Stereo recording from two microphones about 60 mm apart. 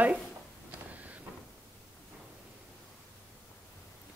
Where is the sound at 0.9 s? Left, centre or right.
Right.